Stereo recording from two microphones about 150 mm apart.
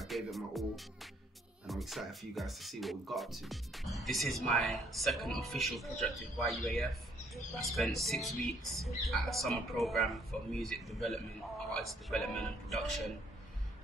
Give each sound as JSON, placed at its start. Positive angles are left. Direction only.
{"t": 0.0, "sound": "music", "side_deg": 0}
{"t": 1.7, "sound": "speech", "side_deg": 0}